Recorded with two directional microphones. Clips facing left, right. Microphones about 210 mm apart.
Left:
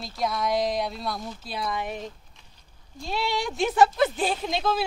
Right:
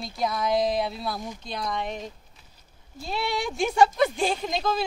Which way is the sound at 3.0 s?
Centre (ahead or behind).